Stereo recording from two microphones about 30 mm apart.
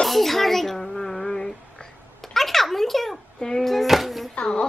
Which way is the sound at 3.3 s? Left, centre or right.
Centre.